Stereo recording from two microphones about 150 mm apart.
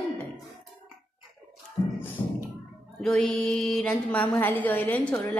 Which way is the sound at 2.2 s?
35° left (ahead or behind).